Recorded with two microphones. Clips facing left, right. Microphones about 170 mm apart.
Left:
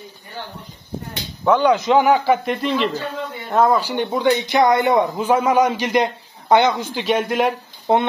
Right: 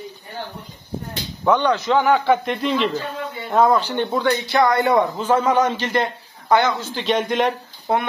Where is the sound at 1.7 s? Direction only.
15° left (ahead or behind).